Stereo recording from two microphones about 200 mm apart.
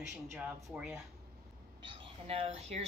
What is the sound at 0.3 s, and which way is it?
Speech, 15° right (ahead or behind).